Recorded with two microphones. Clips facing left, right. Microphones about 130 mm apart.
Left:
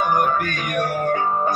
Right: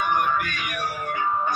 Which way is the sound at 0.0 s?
40° left (ahead or behind).